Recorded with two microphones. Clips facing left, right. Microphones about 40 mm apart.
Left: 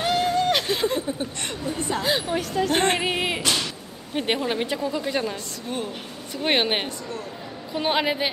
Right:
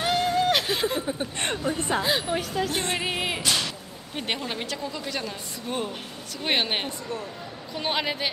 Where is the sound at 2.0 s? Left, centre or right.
Centre.